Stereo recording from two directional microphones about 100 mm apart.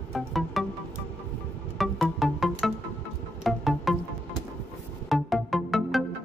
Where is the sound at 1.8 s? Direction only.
Centre (ahead or behind).